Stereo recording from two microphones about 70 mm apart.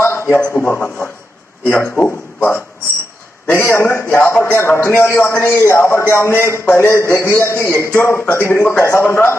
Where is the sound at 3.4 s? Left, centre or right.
Left.